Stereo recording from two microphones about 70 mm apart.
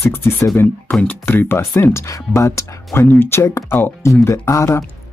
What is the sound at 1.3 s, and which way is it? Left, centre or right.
Speech, left.